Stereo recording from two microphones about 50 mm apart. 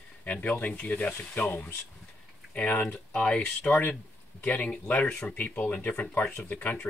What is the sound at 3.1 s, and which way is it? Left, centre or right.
Speech, centre.